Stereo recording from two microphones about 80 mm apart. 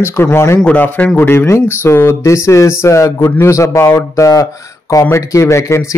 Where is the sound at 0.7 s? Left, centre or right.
Left.